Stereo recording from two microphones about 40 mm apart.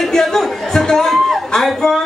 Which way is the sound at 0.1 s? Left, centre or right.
Centre.